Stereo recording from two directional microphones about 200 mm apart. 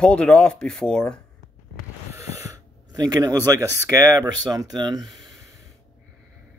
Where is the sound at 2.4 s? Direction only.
20° right (ahead or behind).